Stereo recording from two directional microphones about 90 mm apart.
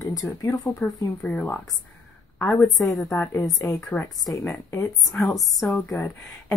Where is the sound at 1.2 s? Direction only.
20° left (ahead or behind).